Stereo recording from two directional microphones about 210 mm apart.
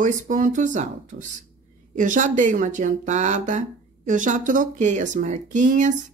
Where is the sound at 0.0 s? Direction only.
35° right (ahead or behind).